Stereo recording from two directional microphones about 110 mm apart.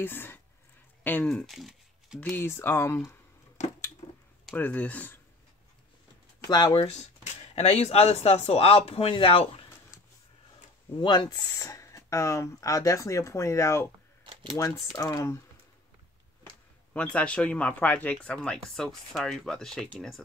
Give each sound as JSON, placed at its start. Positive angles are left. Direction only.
{"t": 0.0, "sound": "speech", "side_deg": 20}
{"t": 1.3, "sound": "crumpling", "side_deg": 0}
{"t": 2.1, "sound": "speech", "side_deg": 15}
{"t": 3.6, "sound": "a sound", "side_deg": 90}
{"t": 4.0, "sound": "a sound", "side_deg": 75}
{"t": 4.6, "sound": "speech", "side_deg": 15}
{"t": 6.4, "sound": "speech", "side_deg": 40}
{"t": 7.5, "sound": "speech", "side_deg": 75}
{"t": 11.0, "sound": "speech", "side_deg": 40}
{"t": 14.2, "sound": "a sound", "side_deg": -55}
{"t": 14.6, "sound": "speech", "side_deg": 30}
{"t": 16.9, "sound": "speech", "side_deg": 10}